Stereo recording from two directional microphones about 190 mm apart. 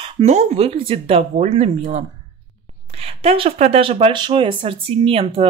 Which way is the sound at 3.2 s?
30° right (ahead or behind).